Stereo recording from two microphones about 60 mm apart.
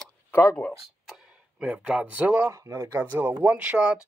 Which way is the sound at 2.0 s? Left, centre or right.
Right.